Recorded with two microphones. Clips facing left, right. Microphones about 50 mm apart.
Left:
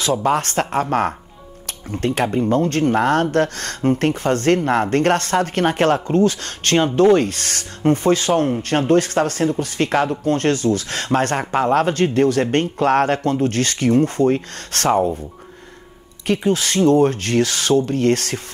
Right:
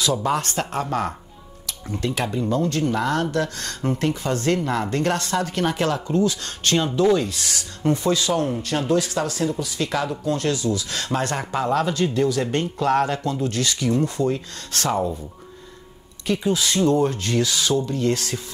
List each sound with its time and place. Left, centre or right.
0.0 s speech: left
16.3 s speech: left